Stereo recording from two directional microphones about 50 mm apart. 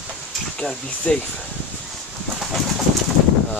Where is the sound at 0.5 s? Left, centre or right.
Centre.